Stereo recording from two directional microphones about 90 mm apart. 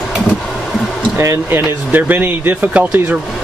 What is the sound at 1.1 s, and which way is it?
Speech, 30° right (ahead or behind).